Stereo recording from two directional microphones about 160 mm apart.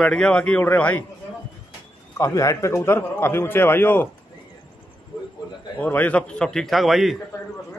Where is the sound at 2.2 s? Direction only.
20° left (ahead or behind).